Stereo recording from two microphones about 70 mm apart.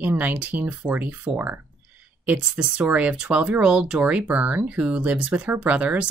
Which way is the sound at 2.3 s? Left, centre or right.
Centre.